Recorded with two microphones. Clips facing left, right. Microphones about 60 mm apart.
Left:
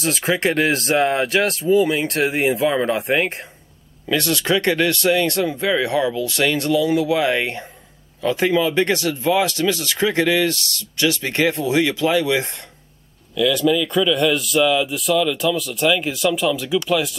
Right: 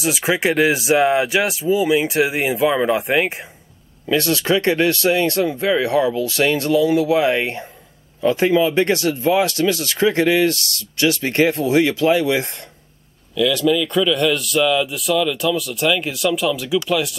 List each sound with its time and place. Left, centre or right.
0.0 s a man's voice: centre
4.1 s speech: right
13.3 s a man's voice: centre